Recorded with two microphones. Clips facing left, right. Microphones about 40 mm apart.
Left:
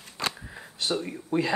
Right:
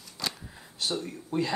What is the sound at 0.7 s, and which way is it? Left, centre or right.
Speech, left.